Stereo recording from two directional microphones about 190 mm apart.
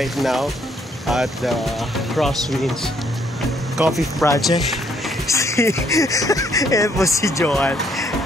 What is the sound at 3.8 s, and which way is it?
Speech, centre (ahead or behind).